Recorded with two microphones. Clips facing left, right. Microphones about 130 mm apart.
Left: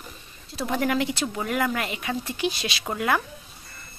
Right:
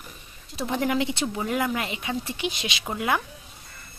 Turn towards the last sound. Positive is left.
turn(degrees=-15)  # may be behind; listen again after turning